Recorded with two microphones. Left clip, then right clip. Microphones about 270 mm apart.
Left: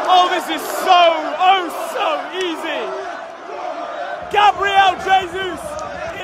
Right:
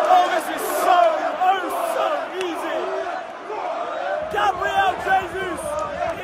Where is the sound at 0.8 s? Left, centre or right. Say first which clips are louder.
Left 4 dB; left.